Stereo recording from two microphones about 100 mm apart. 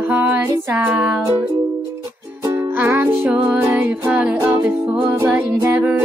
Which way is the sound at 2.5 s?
20° right (ahead or behind).